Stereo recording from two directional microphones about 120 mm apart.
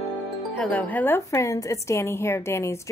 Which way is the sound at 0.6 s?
10° left (ahead or behind).